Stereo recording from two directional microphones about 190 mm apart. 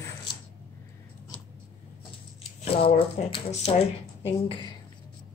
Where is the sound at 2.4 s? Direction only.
30° left (ahead or behind).